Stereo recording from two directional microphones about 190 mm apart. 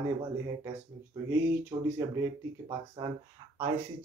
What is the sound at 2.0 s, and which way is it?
Speech, 20° right (ahead or behind).